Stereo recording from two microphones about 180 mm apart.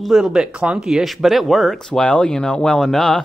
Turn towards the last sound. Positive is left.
turn(degrees=5)  # may be behind; listen again after turning